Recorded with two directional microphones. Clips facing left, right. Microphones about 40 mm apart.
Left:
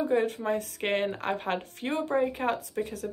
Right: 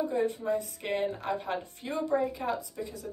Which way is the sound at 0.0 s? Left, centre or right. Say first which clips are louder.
Left 3 dB; left.